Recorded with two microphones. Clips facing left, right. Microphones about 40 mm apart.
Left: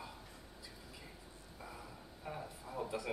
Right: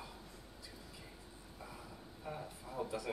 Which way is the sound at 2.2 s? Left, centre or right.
Centre.